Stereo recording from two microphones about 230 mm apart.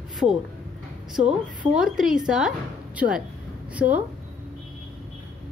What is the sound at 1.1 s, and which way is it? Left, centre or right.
A woman's voice, centre.